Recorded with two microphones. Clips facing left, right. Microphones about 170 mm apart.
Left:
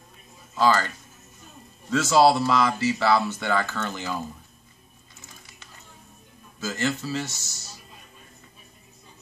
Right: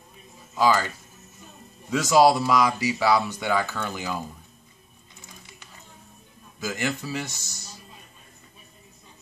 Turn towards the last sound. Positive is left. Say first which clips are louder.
# left 1 dB
turn(degrees=-15)  # may be behind; listen again after turning